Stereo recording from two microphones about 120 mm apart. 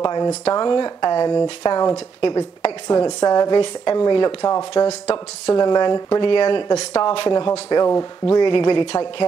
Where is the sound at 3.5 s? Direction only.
45° left (ahead or behind).